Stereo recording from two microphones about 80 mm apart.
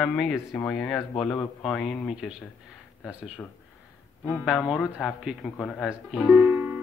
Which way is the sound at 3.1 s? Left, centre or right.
Centre.